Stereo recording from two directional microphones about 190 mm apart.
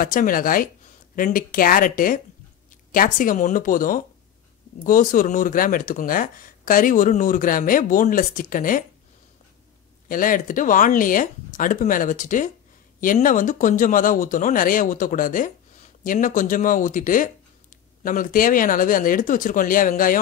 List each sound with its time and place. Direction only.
0.0 s speech: 45° left (ahead or behind)
10.0 s speech: 45° left (ahead or behind)